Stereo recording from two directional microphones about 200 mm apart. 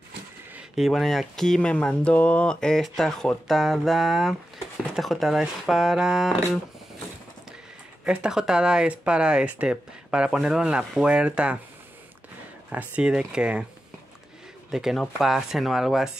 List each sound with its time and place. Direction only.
0.6 s speech: centre (ahead or behind)
8.0 s speech: 5° right (ahead or behind)
12.6 s speech: 5° right (ahead or behind)
14.7 s speech: centre (ahead or behind)